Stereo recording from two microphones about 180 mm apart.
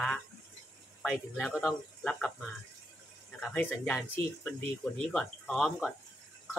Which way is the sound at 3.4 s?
5° left (ahead or behind).